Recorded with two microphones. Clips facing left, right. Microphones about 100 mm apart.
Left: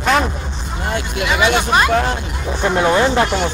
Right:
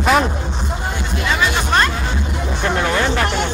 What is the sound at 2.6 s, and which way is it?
Speech, 20° left (ahead or behind).